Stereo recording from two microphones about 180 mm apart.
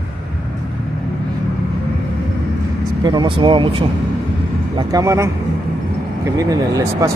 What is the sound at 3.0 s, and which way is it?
Speech, 25° right (ahead or behind).